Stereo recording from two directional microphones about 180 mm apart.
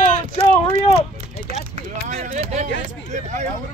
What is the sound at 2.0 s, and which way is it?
Speech, 40° right (ahead or behind).